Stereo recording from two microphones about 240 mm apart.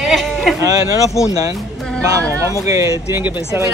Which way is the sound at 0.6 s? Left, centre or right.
Centre.